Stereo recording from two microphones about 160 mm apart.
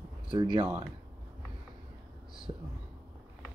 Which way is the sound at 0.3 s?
30° right (ahead or behind).